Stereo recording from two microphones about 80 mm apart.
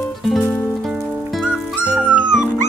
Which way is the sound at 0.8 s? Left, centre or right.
Centre.